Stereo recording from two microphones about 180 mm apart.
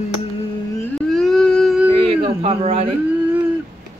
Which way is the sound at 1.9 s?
30° right (ahead or behind).